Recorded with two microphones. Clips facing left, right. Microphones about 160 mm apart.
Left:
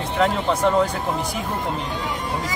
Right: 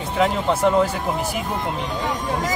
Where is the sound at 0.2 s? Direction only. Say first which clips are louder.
Right 1 dB; 5° right (ahead or behind).